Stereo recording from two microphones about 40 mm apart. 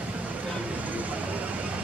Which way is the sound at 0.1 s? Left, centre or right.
Right.